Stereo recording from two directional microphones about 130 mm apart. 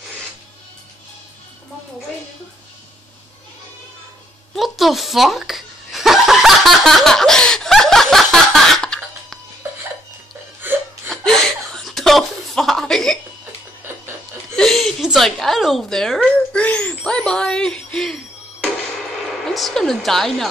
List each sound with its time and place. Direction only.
4.6 s chuckle: centre (ahead or behind)
10.6 s laughter: 15° right (ahead or behind)
11.1 s laughter: 5° left (ahead or behind)
14.5 s a woman's voice: 5° left (ahead or behind)